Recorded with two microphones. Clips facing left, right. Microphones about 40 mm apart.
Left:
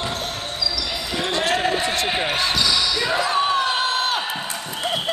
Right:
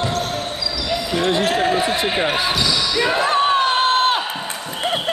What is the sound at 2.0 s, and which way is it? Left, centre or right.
Speech, centre.